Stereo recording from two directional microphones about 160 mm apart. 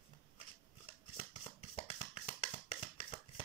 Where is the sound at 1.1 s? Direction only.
35° left (ahead or behind).